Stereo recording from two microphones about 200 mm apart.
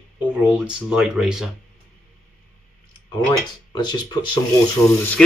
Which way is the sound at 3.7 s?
20° left (ahead or behind).